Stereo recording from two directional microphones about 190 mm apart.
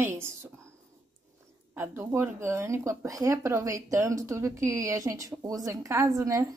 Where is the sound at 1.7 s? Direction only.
10° right (ahead or behind).